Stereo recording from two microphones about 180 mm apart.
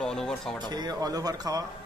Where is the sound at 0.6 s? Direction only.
20° right (ahead or behind).